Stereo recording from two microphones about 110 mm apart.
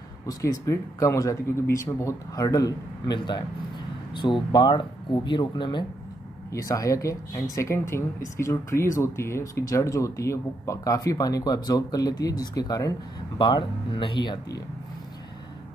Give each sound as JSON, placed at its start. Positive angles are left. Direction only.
{"t": 0.3, "sound": "speech", "side_deg": 30}
{"t": 6.5, "sound": "speech", "side_deg": 30}
{"t": 13.4, "sound": "speech", "side_deg": 45}